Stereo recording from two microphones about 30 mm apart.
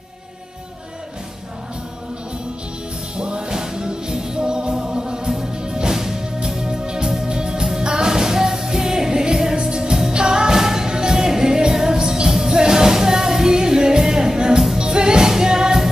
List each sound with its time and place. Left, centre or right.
3.2 s music: right
3.5 s music: right
7.2 s organ: right
7.8 s music: right
12.3 s music: centre
12.5 s music: right